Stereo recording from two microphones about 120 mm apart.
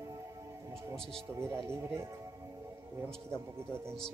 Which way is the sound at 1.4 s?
20° right (ahead or behind).